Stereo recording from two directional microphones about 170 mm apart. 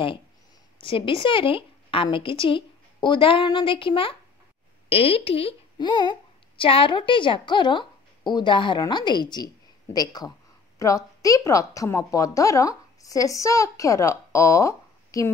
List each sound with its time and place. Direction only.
0.7 s a woman's voice: 30° left (ahead or behind)